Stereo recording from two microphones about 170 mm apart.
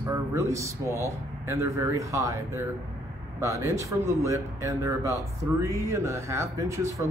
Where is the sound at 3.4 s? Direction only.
20° right (ahead or behind).